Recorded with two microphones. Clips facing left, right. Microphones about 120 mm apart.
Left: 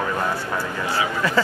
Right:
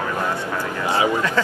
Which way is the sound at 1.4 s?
5° left (ahead or behind).